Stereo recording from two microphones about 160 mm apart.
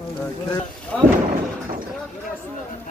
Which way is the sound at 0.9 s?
5° left (ahead or behind).